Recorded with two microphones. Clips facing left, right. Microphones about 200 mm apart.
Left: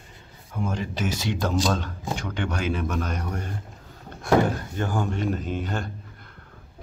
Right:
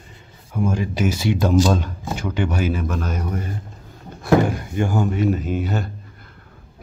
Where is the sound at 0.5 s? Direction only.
10° right (ahead or behind).